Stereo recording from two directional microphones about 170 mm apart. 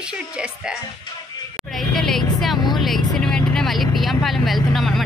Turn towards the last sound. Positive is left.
turn(degrees=0)  # may be behind; listen again after turning